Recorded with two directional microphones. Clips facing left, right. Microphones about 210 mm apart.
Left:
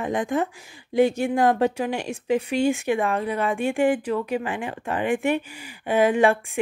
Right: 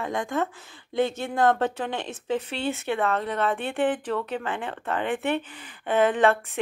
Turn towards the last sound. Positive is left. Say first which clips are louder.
# left 2 dB
turn(degrees=10)  # may be behind; listen again after turning